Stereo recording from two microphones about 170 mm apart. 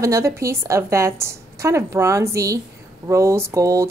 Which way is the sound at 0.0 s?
15° right (ahead or behind).